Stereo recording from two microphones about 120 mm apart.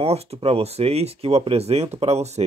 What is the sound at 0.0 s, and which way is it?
Speech, 60° right (ahead or behind).